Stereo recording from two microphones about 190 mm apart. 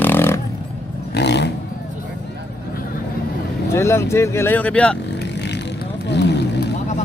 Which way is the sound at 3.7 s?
15° left (ahead or behind).